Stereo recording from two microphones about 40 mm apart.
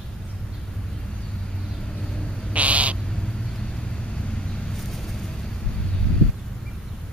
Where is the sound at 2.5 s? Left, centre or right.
Right.